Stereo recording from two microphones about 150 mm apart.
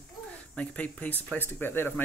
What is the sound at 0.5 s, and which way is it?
Speech, 5° left (ahead or behind).